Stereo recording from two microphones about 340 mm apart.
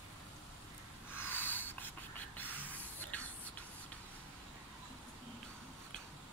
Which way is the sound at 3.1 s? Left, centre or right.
Centre.